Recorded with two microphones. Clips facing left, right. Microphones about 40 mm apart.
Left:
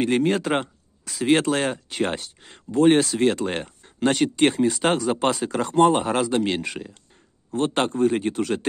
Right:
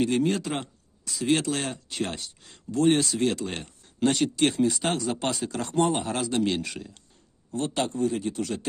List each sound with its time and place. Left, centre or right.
0.0 s speech: left
3.3 s speech: left; by 7.0 s centre
7.5 s a man's voice: left